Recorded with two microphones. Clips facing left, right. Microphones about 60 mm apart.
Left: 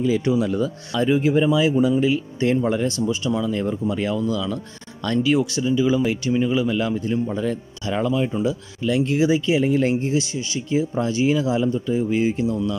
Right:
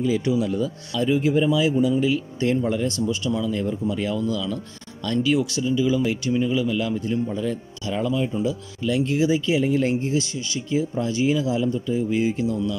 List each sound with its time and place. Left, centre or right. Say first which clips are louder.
0.0 s speech: left 2 dB; left
0.9 s speech: left 2 dB; left
3.1 s speech: left 2 dB; left
9.2 s speech: left 2 dB; left
9.6 s speech: left 2 dB; left
11.0 s speech: left 2 dB; left